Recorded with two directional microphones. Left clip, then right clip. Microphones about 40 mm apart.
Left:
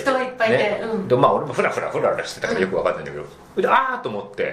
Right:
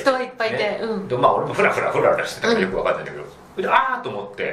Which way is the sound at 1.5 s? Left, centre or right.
Left.